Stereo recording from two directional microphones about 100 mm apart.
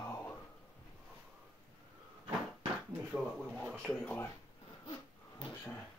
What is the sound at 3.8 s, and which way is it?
Speech, 20° left (ahead or behind).